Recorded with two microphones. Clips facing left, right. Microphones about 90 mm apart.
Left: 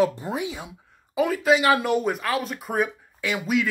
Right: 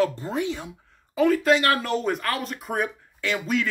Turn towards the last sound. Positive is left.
turn(degrees=5)  # may be behind; listen again after turning